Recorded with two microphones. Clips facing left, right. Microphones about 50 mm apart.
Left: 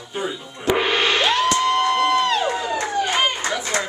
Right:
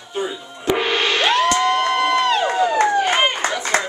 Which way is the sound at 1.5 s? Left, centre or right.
Centre.